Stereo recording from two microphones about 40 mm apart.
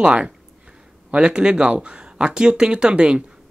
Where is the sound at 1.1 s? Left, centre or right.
Right.